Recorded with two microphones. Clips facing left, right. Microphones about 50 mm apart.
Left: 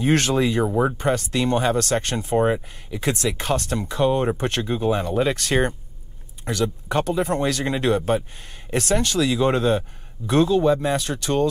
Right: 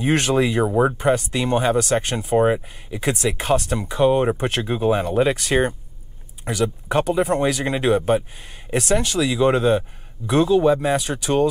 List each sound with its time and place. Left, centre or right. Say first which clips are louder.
0.0 s speech: right 1 dB; centre